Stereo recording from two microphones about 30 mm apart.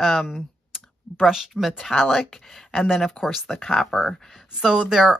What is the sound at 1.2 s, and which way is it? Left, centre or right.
Speech, centre.